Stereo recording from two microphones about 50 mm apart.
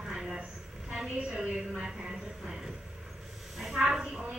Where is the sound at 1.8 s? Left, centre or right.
Centre.